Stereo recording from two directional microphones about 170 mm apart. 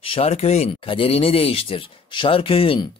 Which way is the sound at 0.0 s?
35° left (ahead or behind).